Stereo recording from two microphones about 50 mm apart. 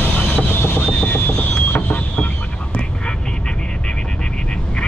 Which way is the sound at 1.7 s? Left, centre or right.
Left.